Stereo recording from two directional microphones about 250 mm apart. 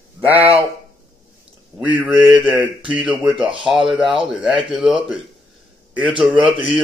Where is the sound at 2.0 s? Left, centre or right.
Centre.